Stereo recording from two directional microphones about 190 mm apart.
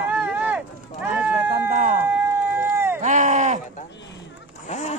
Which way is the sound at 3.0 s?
40° right (ahead or behind).